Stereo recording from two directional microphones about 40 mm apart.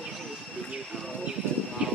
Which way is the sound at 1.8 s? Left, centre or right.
Right.